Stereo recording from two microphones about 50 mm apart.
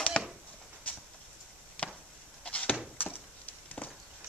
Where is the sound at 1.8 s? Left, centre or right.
Left.